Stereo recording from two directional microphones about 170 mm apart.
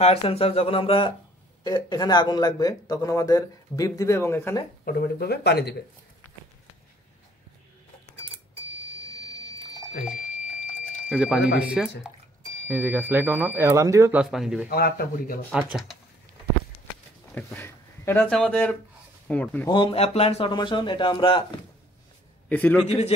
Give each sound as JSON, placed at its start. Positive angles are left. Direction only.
{"t": 0.0, "sound": "a man's voice", "side_deg": 35}
{"t": 4.8, "sound": "speech", "side_deg": 60}
{"t": 9.1, "sound": "a sound", "side_deg": 20}
{"t": 10.1, "sound": "a sound", "side_deg": 50}
{"t": 11.1, "sound": "speech", "side_deg": -5}
{"t": 14.2, "sound": "a man's voice", "side_deg": 0}
{"t": 14.7, "sound": "speech", "side_deg": 60}
{"t": 15.5, "sound": "a man's voice", "side_deg": -5}
{"t": 17.3, "sound": "speech", "side_deg": 10}
{"t": 19.7, "sound": "a man's voice", "side_deg": 30}
{"t": 22.5, "sound": "speech", "side_deg": 10}
{"t": 22.8, "sound": "speech", "side_deg": 35}